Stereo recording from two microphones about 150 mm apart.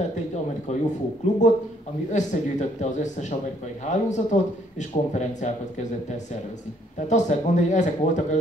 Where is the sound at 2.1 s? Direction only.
50° left (ahead or behind).